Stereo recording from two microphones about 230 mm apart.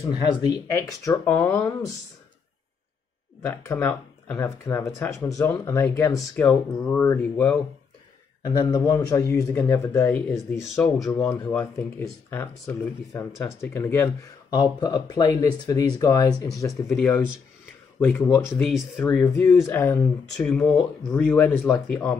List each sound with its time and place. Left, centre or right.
0.0 s speech: centre
3.4 s speech: centre
10.6 s speech: centre
11.1 s speech: centre
16.9 s speech: centre
19.0 s speech: centre